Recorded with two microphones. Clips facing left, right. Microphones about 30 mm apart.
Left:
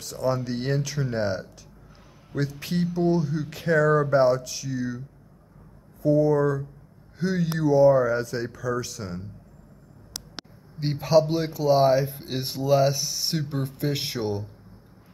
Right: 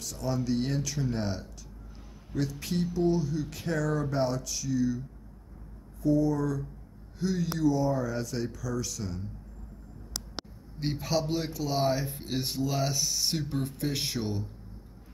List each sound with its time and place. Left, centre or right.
0.0 s speech: centre
2.6 s speech: centre
6.0 s speech: centre
10.8 s speech: centre